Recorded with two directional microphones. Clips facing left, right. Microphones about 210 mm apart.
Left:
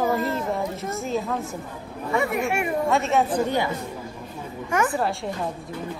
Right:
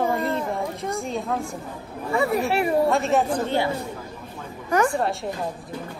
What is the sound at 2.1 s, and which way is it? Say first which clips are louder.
Speech: right 2 dB; 35° right (ahead or behind).